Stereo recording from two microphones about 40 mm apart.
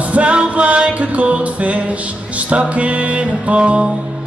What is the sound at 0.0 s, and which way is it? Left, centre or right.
Music, right.